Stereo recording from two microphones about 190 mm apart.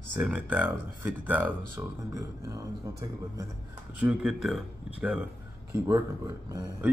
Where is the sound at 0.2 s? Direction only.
5° right (ahead or behind).